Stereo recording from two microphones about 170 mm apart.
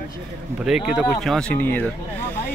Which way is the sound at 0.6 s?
5° right (ahead or behind).